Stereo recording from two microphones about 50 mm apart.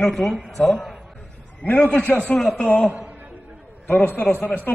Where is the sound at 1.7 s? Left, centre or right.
Left.